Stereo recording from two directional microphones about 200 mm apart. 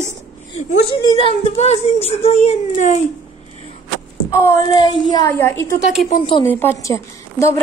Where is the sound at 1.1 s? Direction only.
30° left (ahead or behind).